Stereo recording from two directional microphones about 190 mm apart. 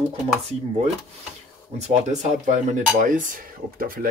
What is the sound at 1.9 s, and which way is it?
Speech, 40° right (ahead or behind).